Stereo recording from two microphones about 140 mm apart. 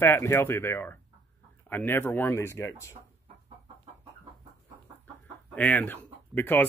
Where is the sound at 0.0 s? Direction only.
15° left (ahead or behind).